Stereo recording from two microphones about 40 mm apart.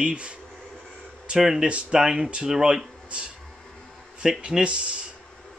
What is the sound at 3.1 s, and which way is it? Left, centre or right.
Speech, right.